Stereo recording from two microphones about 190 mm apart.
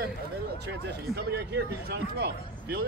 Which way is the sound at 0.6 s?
60° right (ahead or behind).